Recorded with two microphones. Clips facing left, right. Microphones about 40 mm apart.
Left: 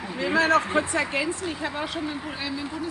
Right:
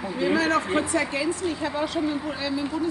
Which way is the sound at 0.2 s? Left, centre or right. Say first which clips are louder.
Left 1 dB; left.